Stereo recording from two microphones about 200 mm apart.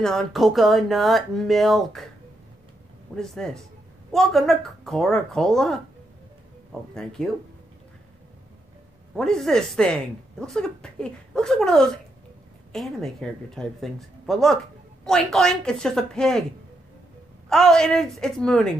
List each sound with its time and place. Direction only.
0.0 s speech: centre (ahead or behind)
3.2 s speech: 5° left (ahead or behind)
9.1 s speech: centre (ahead or behind)
17.5 s speech: 5° left (ahead or behind)